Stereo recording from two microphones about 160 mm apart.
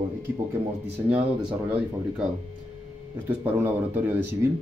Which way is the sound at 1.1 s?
10° right (ahead or behind).